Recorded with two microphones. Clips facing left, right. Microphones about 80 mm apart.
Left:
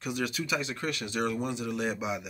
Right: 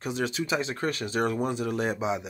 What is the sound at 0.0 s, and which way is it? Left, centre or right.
Speech, right.